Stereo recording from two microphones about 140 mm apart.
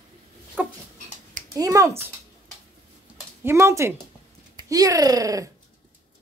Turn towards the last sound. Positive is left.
turn(degrees=-25)  # may be behind; listen again after turning